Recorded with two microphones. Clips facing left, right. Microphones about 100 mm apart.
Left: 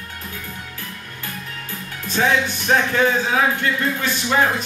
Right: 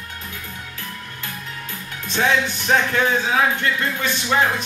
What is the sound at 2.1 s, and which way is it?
Speech, 5° left (ahead or behind).